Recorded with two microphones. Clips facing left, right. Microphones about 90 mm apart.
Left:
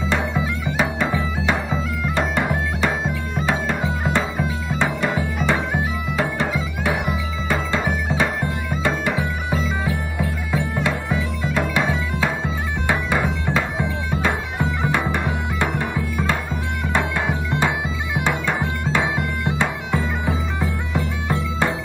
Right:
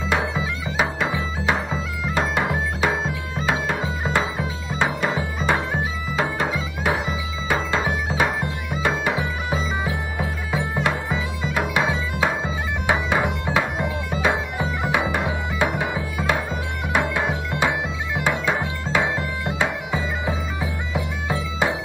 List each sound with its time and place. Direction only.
0.7 s music: 15° right (ahead or behind)
19.9 s bagpipes: 15° right (ahead or behind)